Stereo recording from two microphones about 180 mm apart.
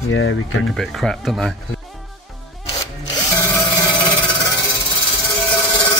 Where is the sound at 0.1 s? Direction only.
90° left.